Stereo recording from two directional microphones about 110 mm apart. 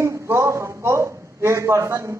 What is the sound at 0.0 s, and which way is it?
A man's voice, 25° right (ahead or behind).